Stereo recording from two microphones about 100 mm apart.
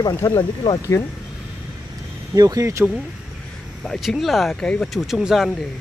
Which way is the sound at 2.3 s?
35° right (ahead or behind).